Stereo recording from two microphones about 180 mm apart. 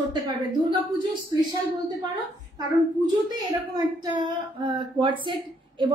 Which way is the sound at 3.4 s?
20° right (ahead or behind).